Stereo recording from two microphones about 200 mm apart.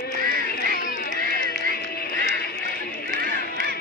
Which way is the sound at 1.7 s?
50° left (ahead or behind).